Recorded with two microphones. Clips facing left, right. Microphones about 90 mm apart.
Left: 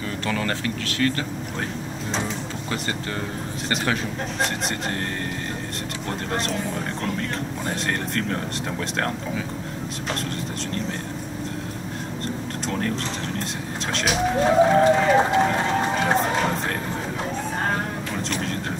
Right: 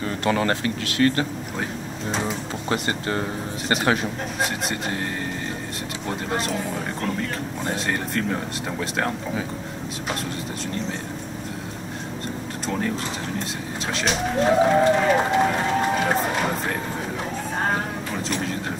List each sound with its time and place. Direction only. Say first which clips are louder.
0.3 s speech: right 4 dB; 25° right (ahead or behind)
4.4 s speech: even; 5° right (ahead or behind)
6.0 s speech: right 1 dB; 5° right (ahead or behind)
12.6 s speech: right 1 dB; 5° right (ahead or behind)
13.9 s speech: left 1 dB; centre (ahead or behind)
15.0 s run: left 1 dB; 5° right (ahead or behind)
17.6 s a sound: right 1 dB; 5° right (ahead or behind)